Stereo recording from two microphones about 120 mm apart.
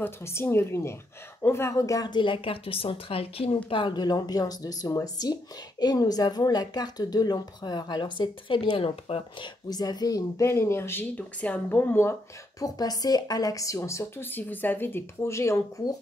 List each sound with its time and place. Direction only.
0.0 s speech: 20° left (ahead or behind); by 9.5 s 50° left (ahead or behind)
9.7 s speech: 35° left (ahead or behind)